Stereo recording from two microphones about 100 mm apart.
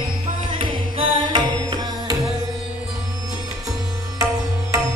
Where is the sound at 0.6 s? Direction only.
60° right (ahead or behind).